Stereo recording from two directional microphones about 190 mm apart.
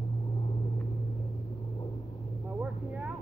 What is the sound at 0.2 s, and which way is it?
Vehicle, 15° left (ahead or behind).